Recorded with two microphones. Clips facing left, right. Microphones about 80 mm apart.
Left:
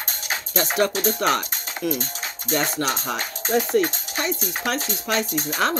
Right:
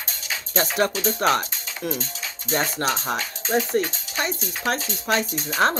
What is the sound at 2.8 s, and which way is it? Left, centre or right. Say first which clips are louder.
Speech: even; right.